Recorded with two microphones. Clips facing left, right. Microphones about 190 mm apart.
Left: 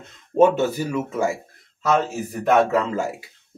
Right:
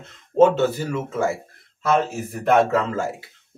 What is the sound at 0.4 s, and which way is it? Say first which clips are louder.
Speech: right 1 dB; 15° left (ahead or behind).